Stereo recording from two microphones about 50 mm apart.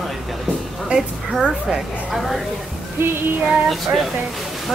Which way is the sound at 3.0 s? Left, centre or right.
Right.